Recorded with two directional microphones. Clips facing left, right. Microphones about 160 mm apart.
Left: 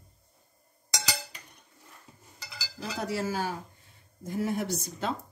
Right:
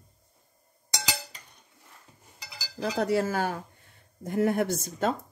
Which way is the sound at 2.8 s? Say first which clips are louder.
Right 6 dB; 55° right (ahead or behind).